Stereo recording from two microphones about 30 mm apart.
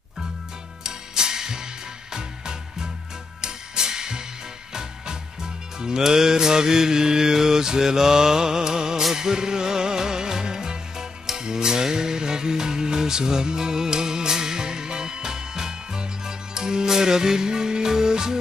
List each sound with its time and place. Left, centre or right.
0.8 s music: right
3.3 s music: right
5.8 s music: right